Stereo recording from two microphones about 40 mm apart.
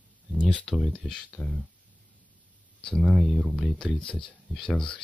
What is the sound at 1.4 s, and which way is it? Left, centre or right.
Speech, left.